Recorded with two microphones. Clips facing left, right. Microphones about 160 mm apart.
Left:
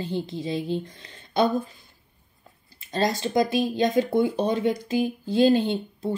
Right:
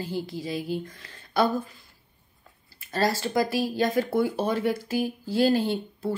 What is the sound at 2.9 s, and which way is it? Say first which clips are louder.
Speech: left 1 dB; 20° left (ahead or behind).